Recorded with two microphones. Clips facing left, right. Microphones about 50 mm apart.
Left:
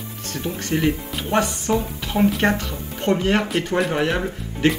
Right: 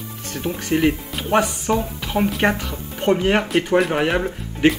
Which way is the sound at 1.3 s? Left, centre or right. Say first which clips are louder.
Right 2 dB; centre.